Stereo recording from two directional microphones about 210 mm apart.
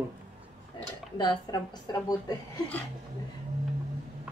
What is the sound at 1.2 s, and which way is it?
Speech, 20° left (ahead or behind).